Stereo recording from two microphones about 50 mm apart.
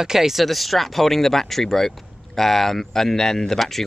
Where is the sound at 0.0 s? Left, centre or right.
Centre.